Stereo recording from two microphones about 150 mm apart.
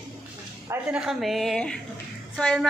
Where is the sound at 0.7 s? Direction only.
5° right (ahead or behind).